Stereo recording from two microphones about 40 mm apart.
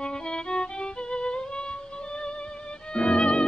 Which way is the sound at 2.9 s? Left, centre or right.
Left.